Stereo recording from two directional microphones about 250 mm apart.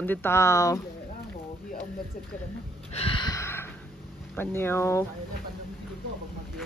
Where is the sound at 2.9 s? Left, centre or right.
Left.